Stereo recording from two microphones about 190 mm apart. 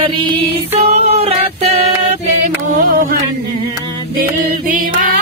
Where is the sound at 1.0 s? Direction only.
35° right (ahead or behind).